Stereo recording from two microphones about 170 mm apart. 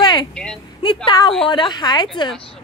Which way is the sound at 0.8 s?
30° left (ahead or behind).